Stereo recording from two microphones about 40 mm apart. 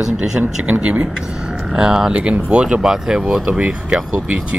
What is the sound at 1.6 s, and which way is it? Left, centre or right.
Speech, centre.